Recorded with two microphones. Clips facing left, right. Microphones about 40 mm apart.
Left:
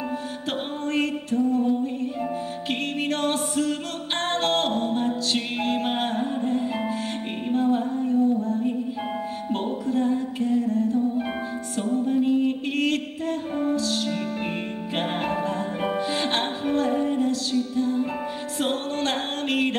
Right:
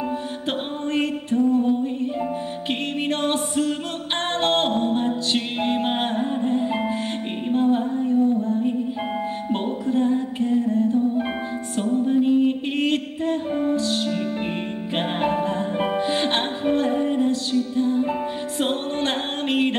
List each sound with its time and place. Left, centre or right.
0.5 s music: right
3.1 s music: right
12.7 s mantra: right
13.7 s music: right
15.0 s music: right